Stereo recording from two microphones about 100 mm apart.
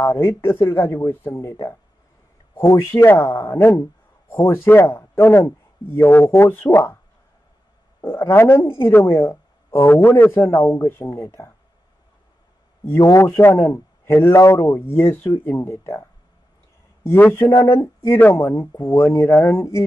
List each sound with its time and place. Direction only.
0.0 s a man's voice: 25° left (ahead or behind)
8.0 s a man's voice: 25° left (ahead or behind)
12.8 s a man's voice: 30° left (ahead or behind)